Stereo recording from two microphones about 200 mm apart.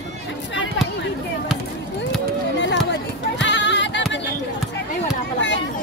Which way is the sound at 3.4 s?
60° left (ahead or behind).